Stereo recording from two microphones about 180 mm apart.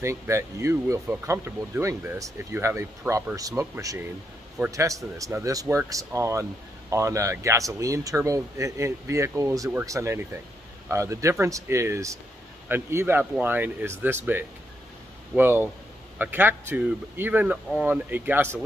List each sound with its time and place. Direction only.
0.0 s speech: 15° right (ahead or behind)